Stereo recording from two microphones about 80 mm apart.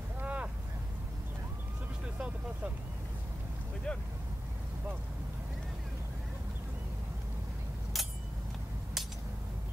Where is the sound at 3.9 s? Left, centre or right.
Centre.